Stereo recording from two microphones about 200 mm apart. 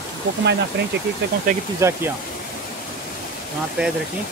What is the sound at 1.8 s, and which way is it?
Speech, 15° right (ahead or behind).